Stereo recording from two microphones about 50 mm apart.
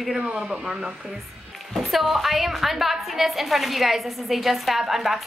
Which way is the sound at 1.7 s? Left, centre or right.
Centre.